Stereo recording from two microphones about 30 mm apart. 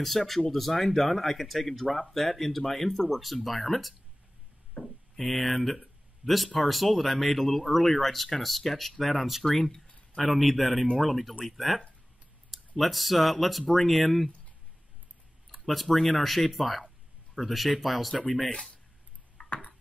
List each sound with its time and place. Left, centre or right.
0.0 s speech: centre
4.8 s a sound: left
5.1 s speech: centre
9.4 s speech: centre
10.3 s speech: centre
10.7 s speech: centre
15.5 s speech: centre
19.4 s a sound: left